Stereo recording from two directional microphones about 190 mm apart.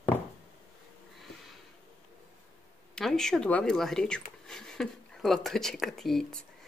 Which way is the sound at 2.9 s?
5° left (ahead or behind).